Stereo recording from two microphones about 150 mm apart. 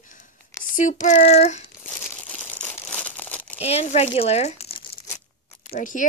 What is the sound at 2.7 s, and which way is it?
Crumpling, 10° left (ahead or behind).